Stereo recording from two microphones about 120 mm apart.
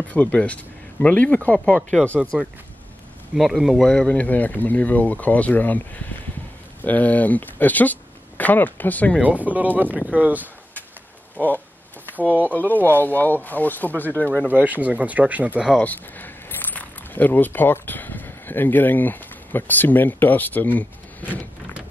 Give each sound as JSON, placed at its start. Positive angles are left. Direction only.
{"t": 0.1, "sound": "speech", "side_deg": 10}
{"t": 3.3, "sound": "speech", "side_deg": 0}
{"t": 9.2, "sound": "speech", "side_deg": -15}
{"t": 11.3, "sound": "speech", "side_deg": 15}
{"t": 12.3, "sound": "speech", "side_deg": -15}
{"t": 12.5, "sound": "speech", "side_deg": 15}
{"t": 14.5, "sound": "speech", "side_deg": -15}
{"t": 15.8, "sound": "speech", "side_deg": 15}